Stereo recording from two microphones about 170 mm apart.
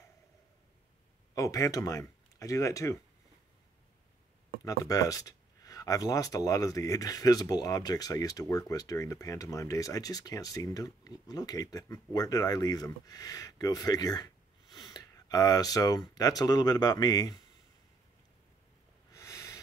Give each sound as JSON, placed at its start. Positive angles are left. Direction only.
{"t": 1.3, "sound": "speech", "side_deg": 20}
{"t": 4.6, "sound": "speech", "side_deg": 20}
{"t": 19.1, "sound": "snort", "side_deg": 20}